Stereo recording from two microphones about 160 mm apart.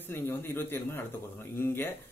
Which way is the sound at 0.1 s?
15° left (ahead or behind).